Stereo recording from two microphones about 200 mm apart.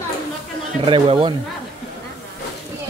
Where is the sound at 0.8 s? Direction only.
25° right (ahead or behind).